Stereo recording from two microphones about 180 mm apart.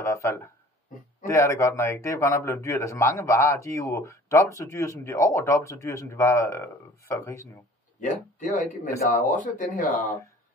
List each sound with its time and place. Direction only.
0.0 s a sound: 15° left (ahead or behind)
1.2 s a man's voice: 15° left (ahead or behind)
8.0 s speech: 45° left (ahead or behind)